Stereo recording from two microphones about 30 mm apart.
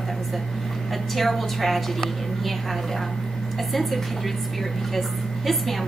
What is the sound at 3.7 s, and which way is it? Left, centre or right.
Speech, centre.